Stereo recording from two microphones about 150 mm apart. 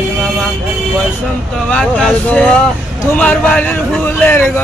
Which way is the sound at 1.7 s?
5° left (ahead or behind).